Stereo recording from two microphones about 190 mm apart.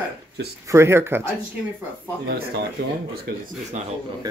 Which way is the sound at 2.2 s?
55° right (ahead or behind).